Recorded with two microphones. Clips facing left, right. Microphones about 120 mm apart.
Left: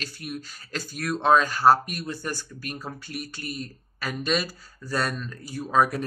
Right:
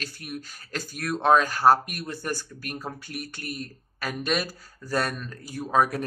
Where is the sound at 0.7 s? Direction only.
50° right (ahead or behind).